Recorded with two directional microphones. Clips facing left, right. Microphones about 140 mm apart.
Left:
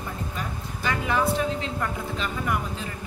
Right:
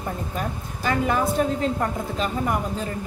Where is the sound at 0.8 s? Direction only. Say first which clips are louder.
Right 2 dB; 45° right (ahead or behind).